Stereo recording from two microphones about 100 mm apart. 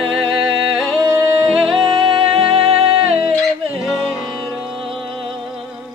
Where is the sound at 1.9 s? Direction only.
60° right (ahead or behind).